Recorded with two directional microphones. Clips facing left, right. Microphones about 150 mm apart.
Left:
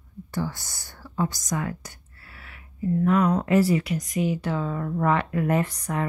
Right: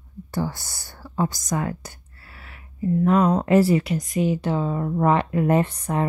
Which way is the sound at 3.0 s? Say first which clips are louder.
Right 3 dB; 30° right (ahead or behind).